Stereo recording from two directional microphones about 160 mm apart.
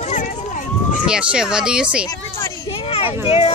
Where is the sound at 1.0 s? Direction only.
5° right (ahead or behind).